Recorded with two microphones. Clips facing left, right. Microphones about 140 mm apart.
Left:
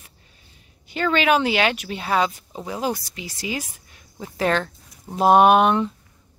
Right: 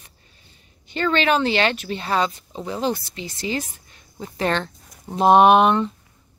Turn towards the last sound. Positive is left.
turn(degrees=0)  # may be behind; listen again after turning